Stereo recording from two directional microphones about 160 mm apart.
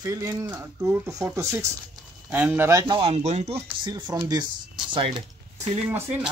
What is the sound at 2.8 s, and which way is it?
Speech, 35° right (ahead or behind).